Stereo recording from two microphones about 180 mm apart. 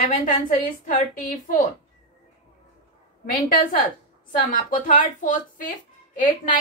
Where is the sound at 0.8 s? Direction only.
50° left (ahead or behind).